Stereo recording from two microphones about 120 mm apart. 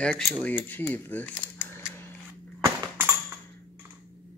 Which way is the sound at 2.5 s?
20° right (ahead or behind).